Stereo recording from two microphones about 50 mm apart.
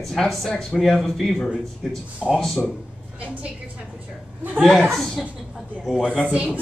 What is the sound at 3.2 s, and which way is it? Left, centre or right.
Speech, right.